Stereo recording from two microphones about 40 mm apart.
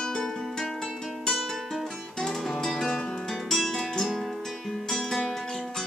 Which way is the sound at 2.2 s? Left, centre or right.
Centre.